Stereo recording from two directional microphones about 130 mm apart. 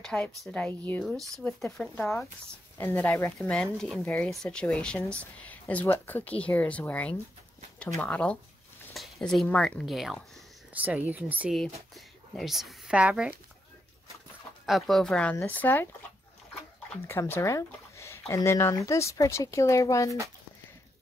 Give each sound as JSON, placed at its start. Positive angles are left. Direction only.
{"t": 0.0, "sound": "speech", "side_deg": 5}
{"t": 1.0, "sound": "speech", "side_deg": 0}
{"t": 2.8, "sound": "speech", "side_deg": 20}
{"t": 3.4, "sound": "speech", "side_deg": 5}
{"t": 10.7, "sound": "speech", "side_deg": -10}
{"t": 11.5, "sound": "speech", "side_deg": 0}
{"t": 14.7, "sound": "speech", "side_deg": 0}
{"t": 17.1, "sound": "speech", "side_deg": 20}